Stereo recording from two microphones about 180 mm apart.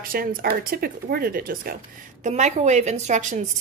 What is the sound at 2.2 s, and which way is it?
A woman's voice, 40° right (ahead or behind).